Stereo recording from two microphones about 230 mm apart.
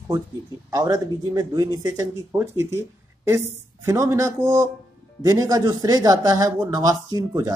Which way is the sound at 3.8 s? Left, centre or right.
Centre.